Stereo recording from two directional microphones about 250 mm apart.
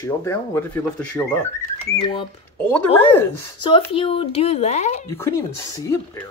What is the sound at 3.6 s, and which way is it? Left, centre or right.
Speech, left.